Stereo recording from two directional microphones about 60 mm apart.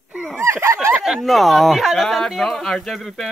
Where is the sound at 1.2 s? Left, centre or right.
Centre.